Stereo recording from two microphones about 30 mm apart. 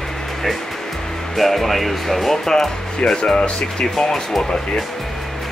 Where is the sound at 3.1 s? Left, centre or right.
Left.